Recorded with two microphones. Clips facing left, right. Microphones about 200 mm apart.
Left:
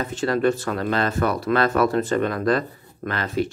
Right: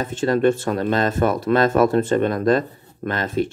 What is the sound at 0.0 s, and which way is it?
Speech, 25° right (ahead or behind).